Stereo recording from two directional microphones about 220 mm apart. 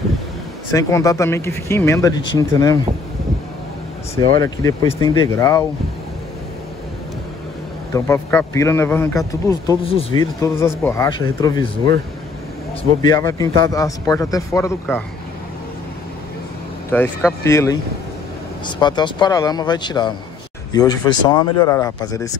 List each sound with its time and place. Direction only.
0.7 s a man's voice: 15° left (ahead or behind)
4.1 s a man's voice: 15° left (ahead or behind)
7.9 s a man's voice: 10° left (ahead or behind)
10.5 s a man's voice: 10° left (ahead or behind)
13.1 s a man's voice: 15° left (ahead or behind)
16.9 s a man's voice: 10° left (ahead or behind)